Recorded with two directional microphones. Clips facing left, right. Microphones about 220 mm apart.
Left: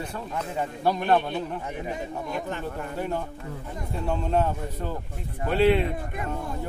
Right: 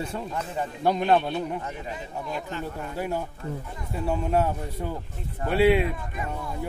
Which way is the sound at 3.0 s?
10° right (ahead or behind).